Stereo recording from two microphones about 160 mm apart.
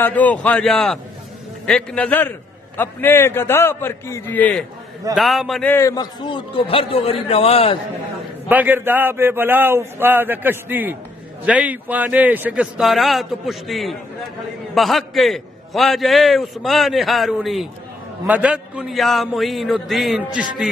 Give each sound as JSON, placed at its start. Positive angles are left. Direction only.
{"t": 0.0, "sound": "a man's voice", "side_deg": 10}
{"t": 5.1, "sound": "a man's voice", "side_deg": 0}
{"t": 5.7, "sound": "a man's voice", "side_deg": 20}
{"t": 8.5, "sound": "a man's voice", "side_deg": -10}